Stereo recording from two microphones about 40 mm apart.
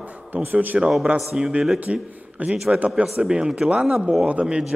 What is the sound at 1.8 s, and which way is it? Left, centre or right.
A man's voice, right.